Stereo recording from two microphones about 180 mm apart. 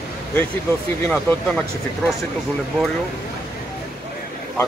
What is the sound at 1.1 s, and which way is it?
Speech, 5° left (ahead or behind).